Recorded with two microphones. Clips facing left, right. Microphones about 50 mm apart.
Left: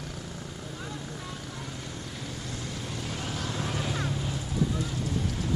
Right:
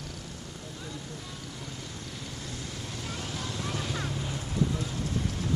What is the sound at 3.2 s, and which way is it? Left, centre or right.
Vehicle, left.